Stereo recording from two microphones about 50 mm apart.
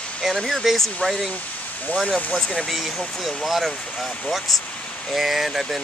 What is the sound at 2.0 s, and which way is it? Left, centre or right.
Speech, left.